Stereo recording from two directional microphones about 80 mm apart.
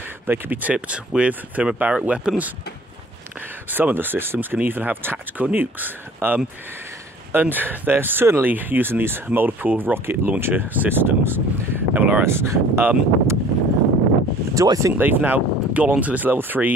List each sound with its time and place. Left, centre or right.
0.3 s speech: right
3.7 s speech: right
12.3 s speech: right
14.5 s speech: right
15.0 s speech: right